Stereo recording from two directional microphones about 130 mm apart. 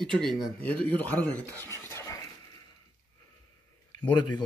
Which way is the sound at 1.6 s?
15° left (ahead or behind).